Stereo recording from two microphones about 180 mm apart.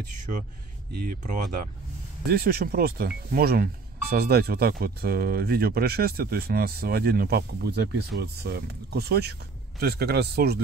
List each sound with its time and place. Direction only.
1.2 s speech: 45° right (ahead or behind)
2.2 s speech: 55° right (ahead or behind)